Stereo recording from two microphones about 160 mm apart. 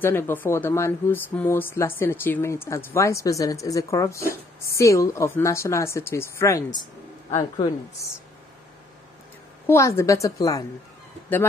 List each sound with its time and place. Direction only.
0.0 s a woman's voice: 15° left (ahead or behind)
9.7 s a woman's voice: 15° left (ahead or behind)